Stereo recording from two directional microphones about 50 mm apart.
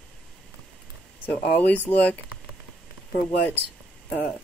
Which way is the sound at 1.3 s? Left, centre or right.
Left.